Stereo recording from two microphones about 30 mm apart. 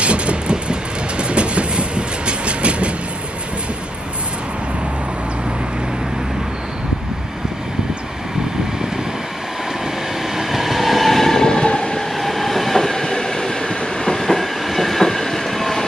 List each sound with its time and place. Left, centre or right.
0.0 s train: right
10.3 s train: centre
11.5 s train: left
12.2 s train: centre
14.2 s train: centre